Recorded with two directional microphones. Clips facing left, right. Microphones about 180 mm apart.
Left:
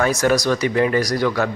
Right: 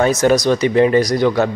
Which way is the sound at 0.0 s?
20° right (ahead or behind).